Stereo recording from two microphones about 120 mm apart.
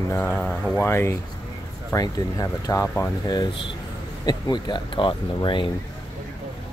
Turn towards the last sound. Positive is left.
turn(degrees=45)  # may be behind; listen again after turning